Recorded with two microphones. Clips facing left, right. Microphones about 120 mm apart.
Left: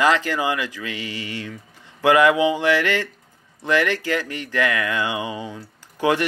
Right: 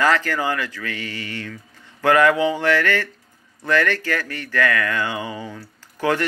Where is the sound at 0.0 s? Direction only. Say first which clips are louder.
Even; 15° left (ahead or behind).